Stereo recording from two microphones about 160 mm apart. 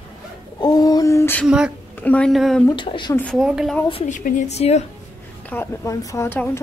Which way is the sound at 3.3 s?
5° right (ahead or behind).